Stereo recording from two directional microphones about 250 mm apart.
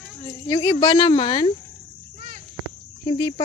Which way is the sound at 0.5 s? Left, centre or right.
Centre.